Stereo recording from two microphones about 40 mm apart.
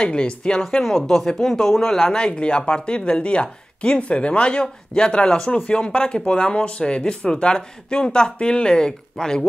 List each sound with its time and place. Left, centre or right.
0.0 s speech: left
0.6 s speech: centre
2.1 s speech: left